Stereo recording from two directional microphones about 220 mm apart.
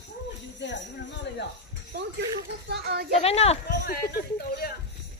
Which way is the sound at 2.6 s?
50° right (ahead or behind).